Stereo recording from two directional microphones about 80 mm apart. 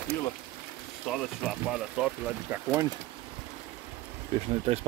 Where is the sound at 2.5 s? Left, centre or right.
Right.